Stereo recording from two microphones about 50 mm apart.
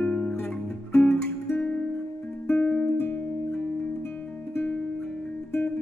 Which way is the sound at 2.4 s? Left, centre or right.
Left.